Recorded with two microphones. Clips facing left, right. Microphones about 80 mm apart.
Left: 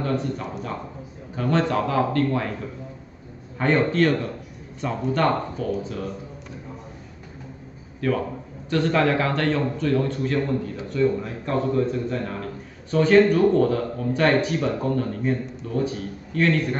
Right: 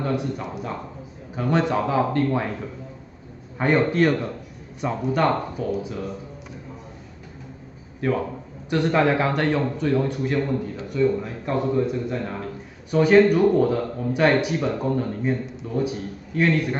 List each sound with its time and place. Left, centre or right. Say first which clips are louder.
0.0 s a man's voice: even; centre
3.5 s a man's voice: right 1 dB; centre
8.0 s a man's voice: even; right